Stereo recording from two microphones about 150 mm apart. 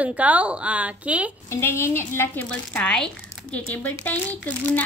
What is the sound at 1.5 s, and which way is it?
Speech, 15° left (ahead or behind).